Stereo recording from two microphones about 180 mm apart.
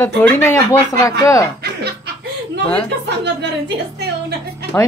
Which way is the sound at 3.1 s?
70° right (ahead or behind).